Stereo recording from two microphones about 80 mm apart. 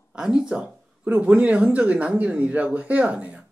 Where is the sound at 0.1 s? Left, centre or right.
Centre.